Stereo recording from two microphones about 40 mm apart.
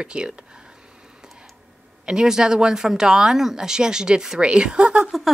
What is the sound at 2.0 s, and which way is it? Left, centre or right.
Speech, centre.